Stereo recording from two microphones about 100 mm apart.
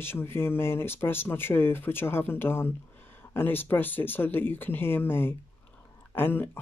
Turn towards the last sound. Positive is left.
turn(degrees=20)  # may be behind; listen again after turning